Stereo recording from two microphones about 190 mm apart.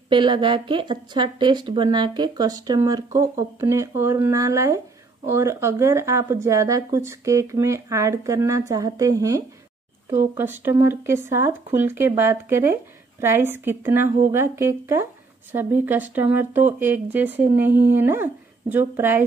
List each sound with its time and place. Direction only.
0.1 s speech: 25° right (ahead or behind)